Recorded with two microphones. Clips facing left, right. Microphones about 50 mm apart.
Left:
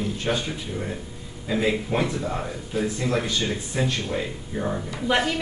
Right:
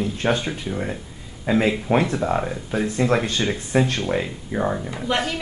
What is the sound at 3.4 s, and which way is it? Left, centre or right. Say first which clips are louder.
Speech: right 5 dB; right.